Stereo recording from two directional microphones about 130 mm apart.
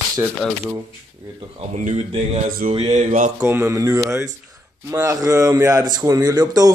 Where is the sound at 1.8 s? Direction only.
70° right (ahead or behind).